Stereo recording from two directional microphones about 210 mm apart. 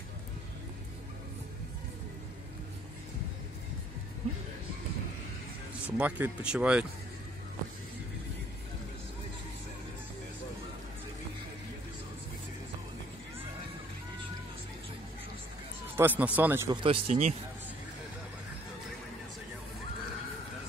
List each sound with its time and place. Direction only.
5.9 s speech: 5° right (ahead or behind)
16.0 s speech: 10° right (ahead or behind)
16.7 s speech: 25° right (ahead or behind)